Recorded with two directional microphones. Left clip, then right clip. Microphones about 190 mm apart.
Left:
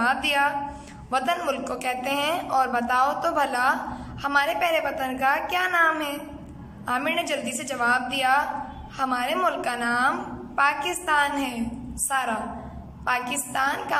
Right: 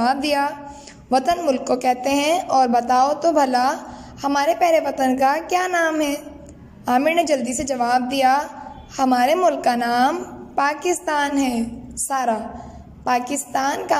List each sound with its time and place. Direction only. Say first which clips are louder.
0.0 s a man's voice: right 3 dB; 30° right (ahead or behind)